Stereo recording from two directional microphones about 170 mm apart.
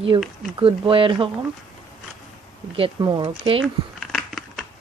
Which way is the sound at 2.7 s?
30° right (ahead or behind).